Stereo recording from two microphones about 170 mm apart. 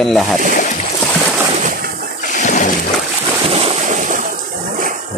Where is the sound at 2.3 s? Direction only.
45° left (ahead or behind).